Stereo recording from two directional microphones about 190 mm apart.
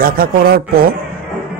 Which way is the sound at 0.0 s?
50° right (ahead or behind).